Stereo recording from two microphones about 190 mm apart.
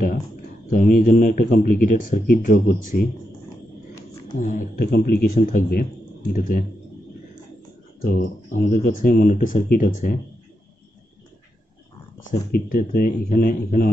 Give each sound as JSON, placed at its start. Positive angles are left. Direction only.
{"t": 0.7, "sound": "speech", "side_deg": 50}
{"t": 4.4, "sound": "speech", "side_deg": 45}
{"t": 8.0, "sound": "speech", "side_deg": 50}
{"t": 12.3, "sound": "speech", "side_deg": 50}